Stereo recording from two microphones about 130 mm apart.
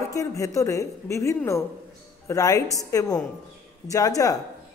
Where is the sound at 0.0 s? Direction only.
25° left (ahead or behind).